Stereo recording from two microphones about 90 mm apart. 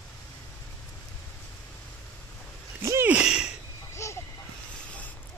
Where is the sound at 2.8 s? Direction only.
35° right (ahead or behind).